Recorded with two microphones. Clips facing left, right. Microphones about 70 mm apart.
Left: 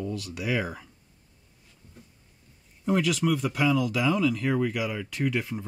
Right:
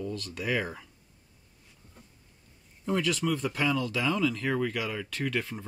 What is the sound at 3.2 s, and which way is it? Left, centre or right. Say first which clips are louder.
Speech: left 4 dB; left.